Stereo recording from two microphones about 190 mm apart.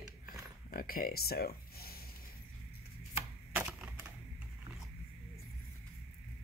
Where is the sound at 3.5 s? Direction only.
10° right (ahead or behind).